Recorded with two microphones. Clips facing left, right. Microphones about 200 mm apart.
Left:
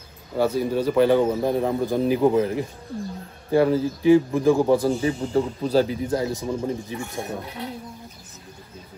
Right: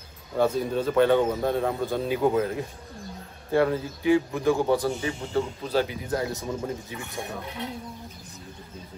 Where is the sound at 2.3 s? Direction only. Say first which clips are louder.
Left 4 dB; 25° left (ahead or behind).